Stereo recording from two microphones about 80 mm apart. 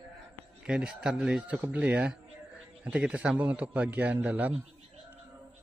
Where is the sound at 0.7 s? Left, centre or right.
Centre.